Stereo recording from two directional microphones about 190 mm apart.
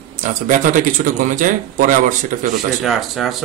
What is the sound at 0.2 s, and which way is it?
Speech, 40° right (ahead or behind).